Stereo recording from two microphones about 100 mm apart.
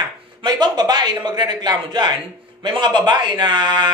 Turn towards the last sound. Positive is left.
turn(degrees=-50)  # may be behind; listen again after turning